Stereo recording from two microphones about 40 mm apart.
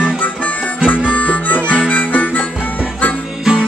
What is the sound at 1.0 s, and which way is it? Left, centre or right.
Harmonica, left.